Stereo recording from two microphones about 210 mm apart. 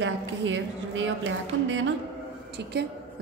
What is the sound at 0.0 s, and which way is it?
A woman's voice, 65° right (ahead or behind).